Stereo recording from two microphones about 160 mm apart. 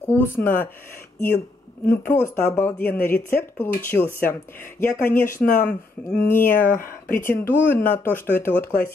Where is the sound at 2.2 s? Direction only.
15° left (ahead or behind).